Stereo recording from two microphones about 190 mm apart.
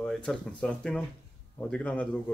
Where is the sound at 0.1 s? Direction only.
5° left (ahead or behind).